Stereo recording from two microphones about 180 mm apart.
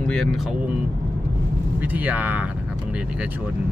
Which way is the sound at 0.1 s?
Centre (ahead or behind).